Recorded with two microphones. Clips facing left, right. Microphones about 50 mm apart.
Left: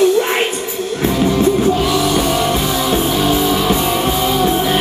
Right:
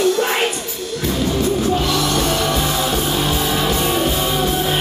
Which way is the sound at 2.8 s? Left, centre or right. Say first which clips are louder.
Left 4 dB; left.